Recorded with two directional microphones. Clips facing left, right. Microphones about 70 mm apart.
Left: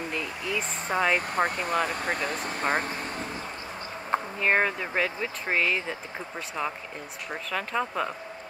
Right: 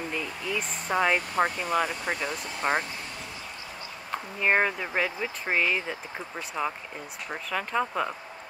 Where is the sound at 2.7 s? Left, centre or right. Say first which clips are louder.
Left 2 dB; left.